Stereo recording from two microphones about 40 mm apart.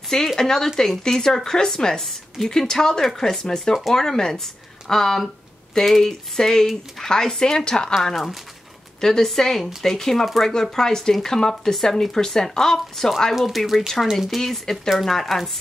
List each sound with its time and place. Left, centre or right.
0.4 s speech: centre
6.6 s speech: centre
7.1 s speech: centre
9.0 s speech: centre
13.3 s speech: centre